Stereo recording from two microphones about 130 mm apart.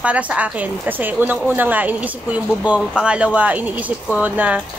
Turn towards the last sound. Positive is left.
turn(degrees=-10)  # may be behind; listen again after turning